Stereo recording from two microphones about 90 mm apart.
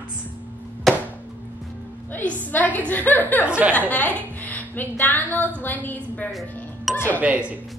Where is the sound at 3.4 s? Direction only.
15° right (ahead or behind).